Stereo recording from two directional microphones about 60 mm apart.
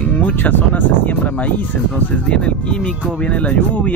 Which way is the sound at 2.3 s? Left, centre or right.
Centre.